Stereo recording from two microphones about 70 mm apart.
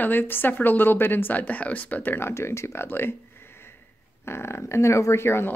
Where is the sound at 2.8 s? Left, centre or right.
Left.